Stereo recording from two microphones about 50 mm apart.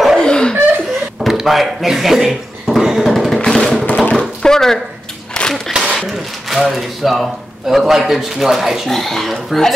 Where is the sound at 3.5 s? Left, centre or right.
Centre.